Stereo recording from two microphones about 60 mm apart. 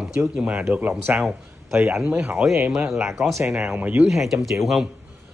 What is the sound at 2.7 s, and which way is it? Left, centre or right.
Speech, centre.